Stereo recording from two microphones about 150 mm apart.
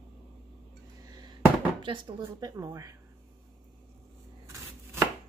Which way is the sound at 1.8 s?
35° right (ahead or behind).